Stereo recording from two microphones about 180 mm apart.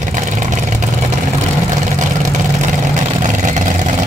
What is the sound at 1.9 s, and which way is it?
Vehicle, 45° right (ahead or behind).